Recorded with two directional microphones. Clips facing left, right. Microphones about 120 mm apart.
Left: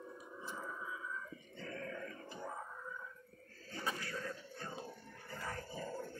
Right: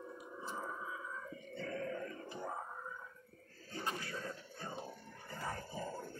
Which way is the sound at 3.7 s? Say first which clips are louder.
Even; 25° right (ahead or behind).